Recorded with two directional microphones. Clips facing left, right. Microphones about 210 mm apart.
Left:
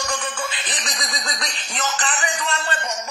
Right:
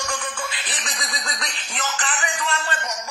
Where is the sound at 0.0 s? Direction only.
35° left (ahead or behind).